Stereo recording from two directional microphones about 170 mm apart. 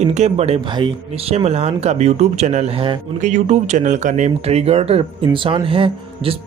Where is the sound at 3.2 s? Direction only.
45° right (ahead or behind).